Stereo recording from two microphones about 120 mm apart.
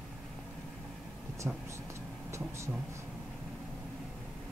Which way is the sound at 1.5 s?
10° right (ahead or behind).